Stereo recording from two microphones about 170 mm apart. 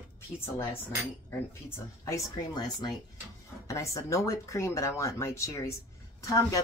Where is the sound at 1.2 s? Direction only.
15° left (ahead or behind).